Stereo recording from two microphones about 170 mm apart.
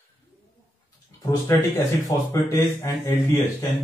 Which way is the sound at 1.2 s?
15° left (ahead or behind).